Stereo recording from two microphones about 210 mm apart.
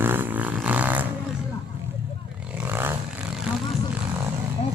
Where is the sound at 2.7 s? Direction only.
10° right (ahead or behind).